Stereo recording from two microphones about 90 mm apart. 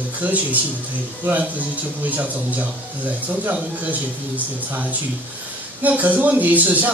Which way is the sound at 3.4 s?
15° right (ahead or behind).